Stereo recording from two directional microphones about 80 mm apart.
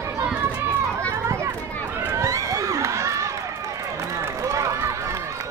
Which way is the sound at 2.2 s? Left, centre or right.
Right.